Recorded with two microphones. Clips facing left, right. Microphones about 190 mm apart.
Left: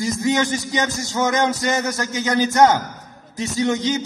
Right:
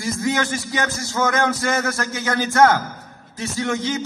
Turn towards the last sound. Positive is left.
turn(degrees=20)  # may be behind; listen again after turning